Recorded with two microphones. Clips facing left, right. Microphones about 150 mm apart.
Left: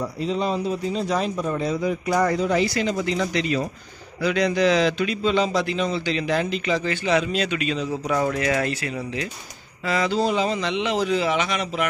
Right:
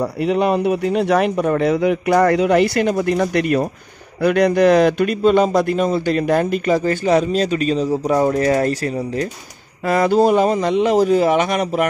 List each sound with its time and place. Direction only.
0.0 s a man's voice: 65° right (ahead or behind); by 9.3 s 40° right (ahead or behind)
9.8 s a man's voice: 50° right (ahead or behind)